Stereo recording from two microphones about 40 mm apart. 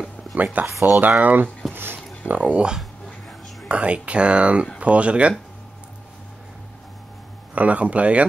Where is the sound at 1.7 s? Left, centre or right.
Right.